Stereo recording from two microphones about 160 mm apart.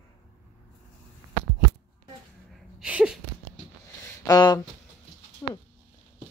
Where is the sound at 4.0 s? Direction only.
25° left (ahead or behind).